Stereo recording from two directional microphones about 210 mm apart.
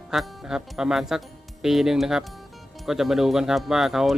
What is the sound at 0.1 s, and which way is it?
Speech, centre (ahead or behind).